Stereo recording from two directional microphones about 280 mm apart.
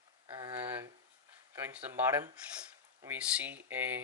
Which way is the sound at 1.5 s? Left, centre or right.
Centre.